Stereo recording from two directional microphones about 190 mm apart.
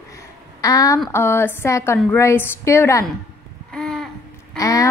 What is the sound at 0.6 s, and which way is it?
A woman's voice, 20° left (ahead or behind).